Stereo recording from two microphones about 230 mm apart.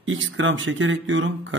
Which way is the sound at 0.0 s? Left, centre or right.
Right.